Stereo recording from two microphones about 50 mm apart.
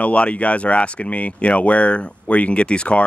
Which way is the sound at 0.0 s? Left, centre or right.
Left.